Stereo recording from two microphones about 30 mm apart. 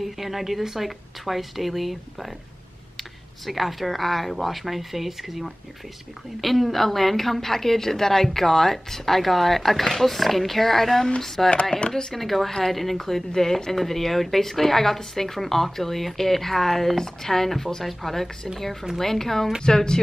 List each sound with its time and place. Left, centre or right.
0.0 s a woman's voice: centre
13.3 s a woman's voice: centre
19.6 s speech: left